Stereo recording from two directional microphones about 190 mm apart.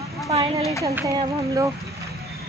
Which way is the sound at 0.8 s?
15° right (ahead or behind).